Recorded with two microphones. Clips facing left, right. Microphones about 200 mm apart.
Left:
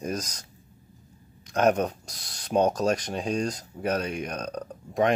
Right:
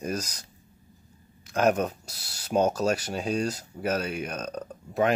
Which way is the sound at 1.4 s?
40° left (ahead or behind).